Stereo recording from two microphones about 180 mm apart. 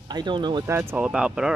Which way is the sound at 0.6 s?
15° right (ahead or behind).